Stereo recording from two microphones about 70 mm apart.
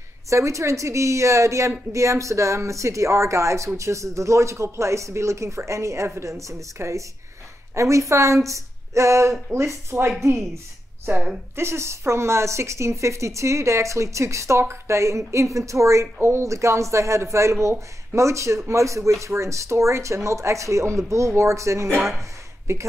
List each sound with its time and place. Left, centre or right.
0.3 s a woman's voice: right